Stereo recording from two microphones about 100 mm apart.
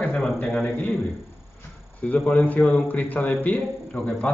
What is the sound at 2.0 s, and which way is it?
Speech, 15° left (ahead or behind).